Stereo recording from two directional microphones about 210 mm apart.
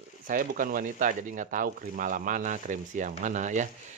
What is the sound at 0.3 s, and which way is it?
Speech, 40° right (ahead or behind).